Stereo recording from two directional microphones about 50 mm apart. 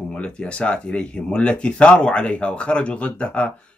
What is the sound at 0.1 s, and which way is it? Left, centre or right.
Speech, left.